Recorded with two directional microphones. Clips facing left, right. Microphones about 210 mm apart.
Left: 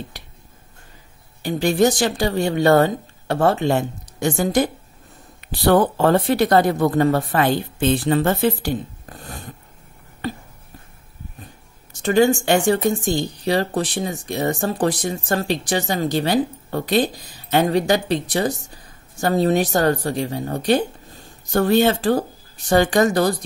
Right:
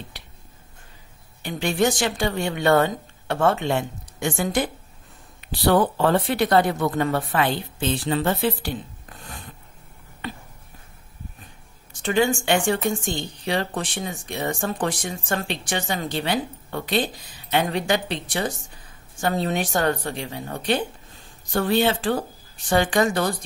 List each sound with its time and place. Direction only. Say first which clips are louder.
1.4 s speech: left 5 dB; 40° left (ahead or behind)
10.2 s a sound: left 6 dB; 40° left (ahead or behind)
12.0 s speech: left 5 dB; 40° left (ahead or behind)